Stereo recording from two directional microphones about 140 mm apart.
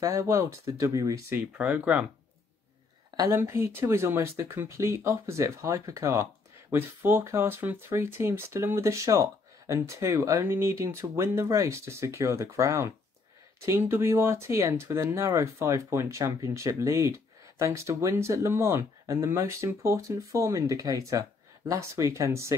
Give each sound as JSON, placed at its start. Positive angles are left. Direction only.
{"t": 0.0, "sound": "speech", "side_deg": -20}
{"t": 1.6, "sound": "speech", "side_deg": -10}
{"t": 3.2, "sound": "speech", "side_deg": -20}